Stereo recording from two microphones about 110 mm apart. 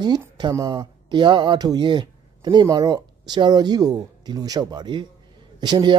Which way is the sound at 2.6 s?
35° right (ahead or behind).